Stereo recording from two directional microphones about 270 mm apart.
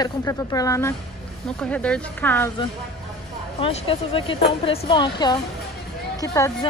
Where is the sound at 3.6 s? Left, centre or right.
Centre.